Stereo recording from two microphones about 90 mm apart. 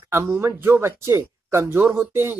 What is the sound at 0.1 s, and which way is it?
Speech, 30° right (ahead or behind).